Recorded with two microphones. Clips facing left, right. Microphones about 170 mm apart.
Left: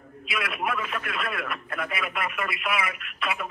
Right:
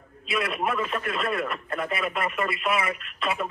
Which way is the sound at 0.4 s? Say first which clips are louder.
Right 3 dB; 35° right (ahead or behind).